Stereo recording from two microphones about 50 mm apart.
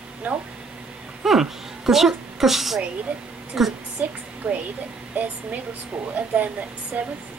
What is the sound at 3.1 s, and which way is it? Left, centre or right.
Speech, right.